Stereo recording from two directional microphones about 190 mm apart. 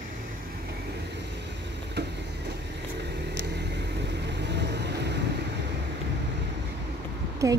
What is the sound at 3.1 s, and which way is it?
Vehicle, 65° right (ahead or behind).